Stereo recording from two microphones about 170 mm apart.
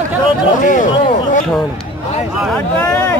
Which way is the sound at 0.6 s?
50° left (ahead or behind).